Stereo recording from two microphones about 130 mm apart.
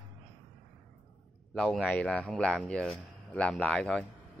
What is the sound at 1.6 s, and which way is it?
Speech, centre (ahead or behind).